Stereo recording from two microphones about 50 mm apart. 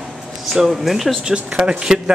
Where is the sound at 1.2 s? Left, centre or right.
Right.